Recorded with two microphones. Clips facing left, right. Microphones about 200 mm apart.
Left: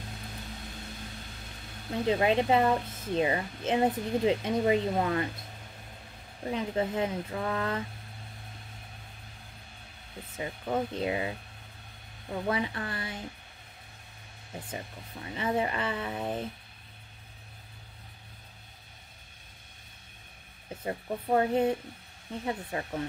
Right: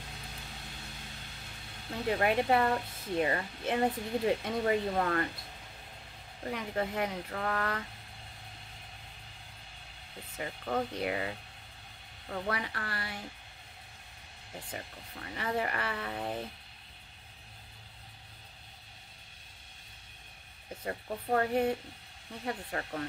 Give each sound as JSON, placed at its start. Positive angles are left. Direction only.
{"t": 2.0, "sound": "a woman's voice", "side_deg": 20}
{"t": 6.4, "sound": "a woman's voice", "side_deg": 20}
{"t": 10.3, "sound": "a woman's voice", "side_deg": 20}
{"t": 14.7, "sound": "a woman's voice", "side_deg": 20}
{"t": 20.8, "sound": "a woman's voice", "side_deg": 20}